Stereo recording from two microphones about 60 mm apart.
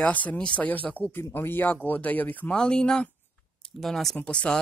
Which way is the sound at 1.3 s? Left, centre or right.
Left.